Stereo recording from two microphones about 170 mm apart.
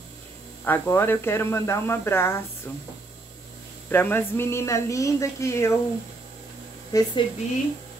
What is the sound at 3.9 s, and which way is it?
Speech, 10° left (ahead or behind).